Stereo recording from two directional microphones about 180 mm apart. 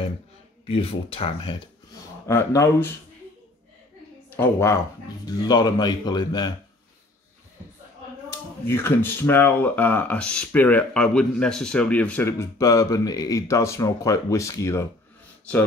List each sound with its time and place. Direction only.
0.7 s speech: 30° left (ahead or behind)
2.2 s speech: 15° left (ahead or behind)
4.4 s speech: 15° left (ahead or behind)
8.3 s speech: 15° left (ahead or behind)